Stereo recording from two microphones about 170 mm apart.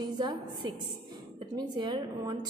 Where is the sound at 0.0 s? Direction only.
25° right (ahead or behind).